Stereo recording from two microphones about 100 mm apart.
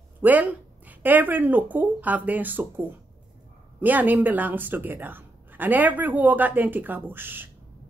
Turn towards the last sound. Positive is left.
turn(degrees=-20)  # may be behind; listen again after turning